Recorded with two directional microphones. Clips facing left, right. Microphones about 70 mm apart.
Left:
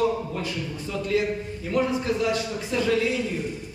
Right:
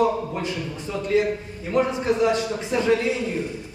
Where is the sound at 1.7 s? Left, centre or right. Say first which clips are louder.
Right 3 dB; right.